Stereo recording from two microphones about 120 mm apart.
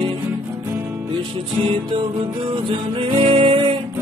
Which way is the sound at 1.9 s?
45° right (ahead or behind).